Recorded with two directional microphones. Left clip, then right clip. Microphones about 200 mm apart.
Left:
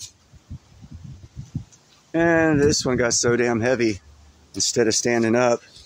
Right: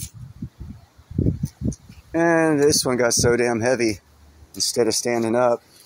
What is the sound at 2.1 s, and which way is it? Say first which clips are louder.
Speech: even; 15° left (ahead or behind).